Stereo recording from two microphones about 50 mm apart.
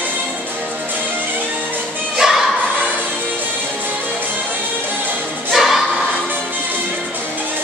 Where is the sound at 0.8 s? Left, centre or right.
Right.